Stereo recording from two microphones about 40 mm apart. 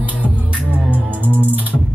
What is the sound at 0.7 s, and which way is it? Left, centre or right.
Music, right.